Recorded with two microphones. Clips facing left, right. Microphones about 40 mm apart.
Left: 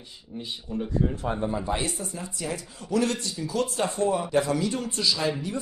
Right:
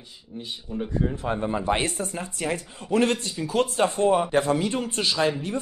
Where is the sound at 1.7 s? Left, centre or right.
Right.